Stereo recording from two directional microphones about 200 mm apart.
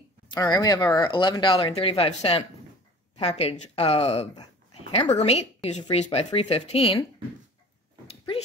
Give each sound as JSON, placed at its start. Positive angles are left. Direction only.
{"t": 0.3, "sound": "a woman's voice", "side_deg": 20}